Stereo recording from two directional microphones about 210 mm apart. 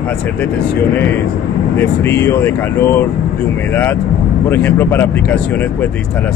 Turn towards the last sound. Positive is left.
turn(degrees=10)  # may be behind; listen again after turning